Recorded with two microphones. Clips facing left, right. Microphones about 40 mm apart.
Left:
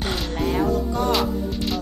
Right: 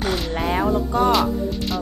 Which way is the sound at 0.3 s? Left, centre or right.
Right.